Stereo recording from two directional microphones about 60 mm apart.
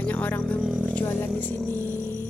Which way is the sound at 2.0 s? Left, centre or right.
Left.